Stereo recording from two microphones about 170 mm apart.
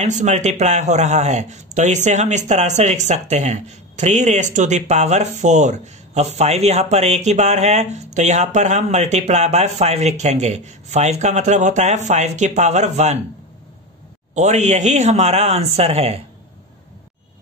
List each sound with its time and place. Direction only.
0.0 s a man's voice: 40° right (ahead or behind)
14.3 s speech: 45° right (ahead or behind)